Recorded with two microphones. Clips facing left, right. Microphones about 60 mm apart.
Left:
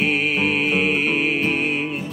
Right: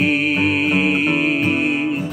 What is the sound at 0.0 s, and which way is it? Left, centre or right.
Music, centre.